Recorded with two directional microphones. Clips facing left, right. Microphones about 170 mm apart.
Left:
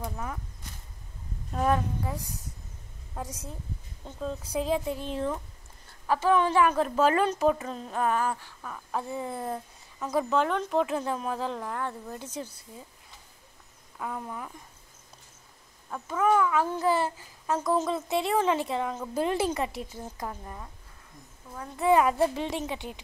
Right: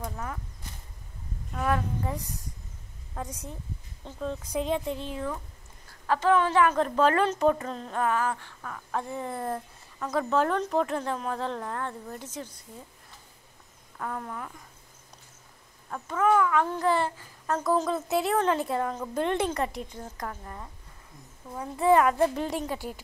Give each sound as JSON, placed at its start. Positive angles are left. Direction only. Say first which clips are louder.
{"t": 0.0, "sound": "speech", "louder": "even", "side_deg": 10}
{"t": 1.5, "sound": "speech", "louder": "left 2 dB", "side_deg": 30}
{"t": 2.0, "sound": "speech", "louder": "right 1 dB", "side_deg": 0}
{"t": 4.0, "sound": "a woman's voice", "louder": "right 1 dB", "side_deg": 5}
{"t": 5.1, "sound": "speech", "louder": "left 3 dB", "side_deg": 25}
{"t": 6.0, "sound": "a woman's voice", "louder": "even", "side_deg": 10}
{"t": 8.4, "sound": "a woman's voice", "louder": "right 1 dB", "side_deg": 5}
{"t": 13.9, "sound": "a woman's voice", "louder": "right 1 dB", "side_deg": 10}
{"t": 15.9, "sound": "a woman's voice", "louder": "right 1 dB", "side_deg": 10}
{"t": 21.7, "sound": "speech", "louder": "right 1 dB", "side_deg": 5}